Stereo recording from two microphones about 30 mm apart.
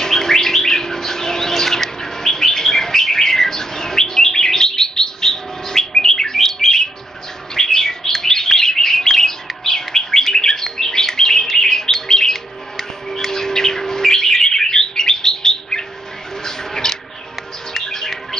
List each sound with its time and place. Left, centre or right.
0.0 s bird: centre
16.4 s a sound: centre
17.8 s bird: centre